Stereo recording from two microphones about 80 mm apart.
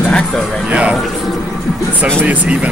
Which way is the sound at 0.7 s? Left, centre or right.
Centre.